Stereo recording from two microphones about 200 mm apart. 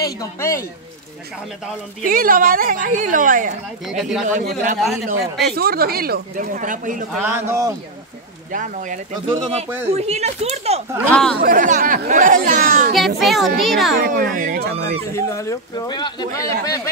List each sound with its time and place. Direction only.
0.0 s speech: 15° left (ahead or behind)
2.0 s speech: 45° right (ahead or behind)
3.8 s a child's voice: centre (ahead or behind)
4.3 s speech: 40° right (ahead or behind)
4.7 s a child's voice: centre (ahead or behind)
5.6 s speech: 50° right (ahead or behind)
7.1 s speech: 10° right (ahead or behind)
8.5 s speech: 40° right (ahead or behind)
11.1 s a child's voice: 5° left (ahead or behind)
11.4 s speech: 40° right (ahead or behind)
12.9 s a child's voice: centre (ahead or behind)
14.0 s speech: 45° right (ahead or behind)
15.1 s speech: 15° left (ahead or behind)